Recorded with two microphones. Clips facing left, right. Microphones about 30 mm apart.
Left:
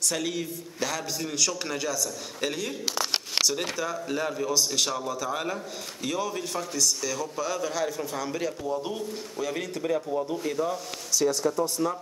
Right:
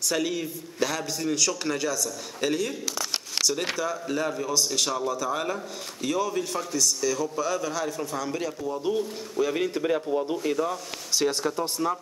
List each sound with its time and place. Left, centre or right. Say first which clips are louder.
0.0 s a man's voice: right 2 dB; centre
2.9 s crumpling: left 2 dB; left
3.7 s a man's voice: right 2 dB; centre
9.4 s a man's voice: right 6 dB; centre
11.1 s speech: left 1 dB; right